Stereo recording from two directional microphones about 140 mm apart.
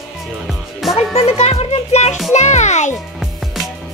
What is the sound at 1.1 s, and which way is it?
Music, 45° left (ahead or behind).